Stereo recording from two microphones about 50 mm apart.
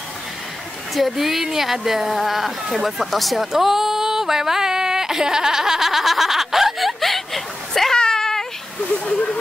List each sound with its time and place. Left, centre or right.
0.9 s speech: centre
8.0 s cat: centre
9.0 s speech: left